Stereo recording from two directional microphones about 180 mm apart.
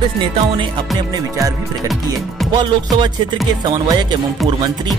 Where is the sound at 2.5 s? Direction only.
25° right (ahead or behind).